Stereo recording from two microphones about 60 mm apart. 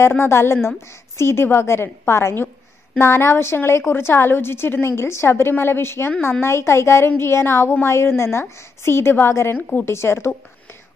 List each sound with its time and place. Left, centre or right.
0.3 s a woman's voice: left